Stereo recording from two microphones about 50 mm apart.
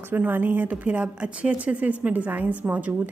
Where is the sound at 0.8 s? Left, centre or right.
Right.